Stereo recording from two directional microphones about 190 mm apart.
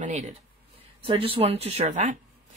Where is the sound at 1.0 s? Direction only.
30° right (ahead or behind).